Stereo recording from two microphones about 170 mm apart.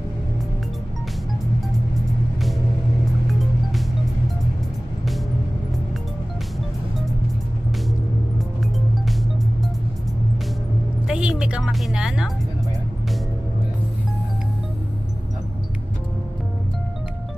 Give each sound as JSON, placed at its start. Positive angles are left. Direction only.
{"t": 11.1, "sound": "music", "side_deg": -5}